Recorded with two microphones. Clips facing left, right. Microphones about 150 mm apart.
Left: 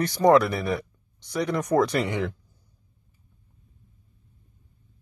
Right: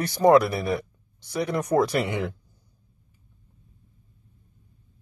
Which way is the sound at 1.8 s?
10° right (ahead or behind).